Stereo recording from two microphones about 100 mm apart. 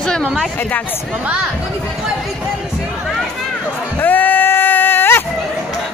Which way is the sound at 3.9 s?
20° left (ahead or behind).